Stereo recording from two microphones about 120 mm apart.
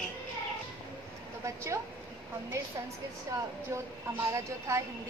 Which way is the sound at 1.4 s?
25° right (ahead or behind).